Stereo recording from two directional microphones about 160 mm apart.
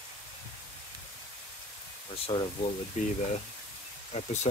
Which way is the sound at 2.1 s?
35° left (ahead or behind).